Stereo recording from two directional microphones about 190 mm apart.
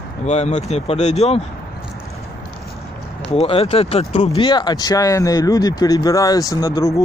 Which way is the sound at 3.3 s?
30° left (ahead or behind).